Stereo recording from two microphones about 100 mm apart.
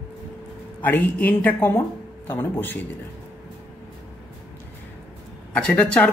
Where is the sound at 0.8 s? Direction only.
20° left (ahead or behind).